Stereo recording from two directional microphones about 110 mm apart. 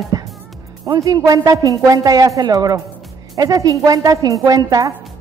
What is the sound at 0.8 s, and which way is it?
A woman's voice, 35° right (ahead or behind).